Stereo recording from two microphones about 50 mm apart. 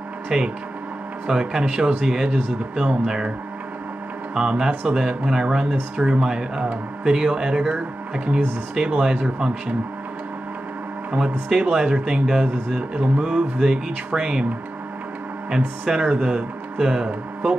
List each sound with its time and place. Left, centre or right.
0.3 s speech: centre
4.4 s speech: centre
11.1 s speech: centre
15.8 s speech: centre